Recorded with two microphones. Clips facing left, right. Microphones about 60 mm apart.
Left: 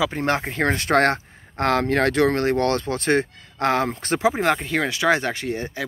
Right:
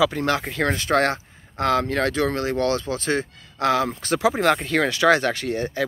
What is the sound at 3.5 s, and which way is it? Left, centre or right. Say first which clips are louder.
Speech: even; left.